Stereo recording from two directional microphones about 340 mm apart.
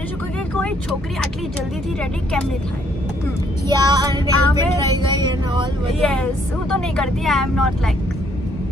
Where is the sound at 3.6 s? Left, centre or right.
Centre.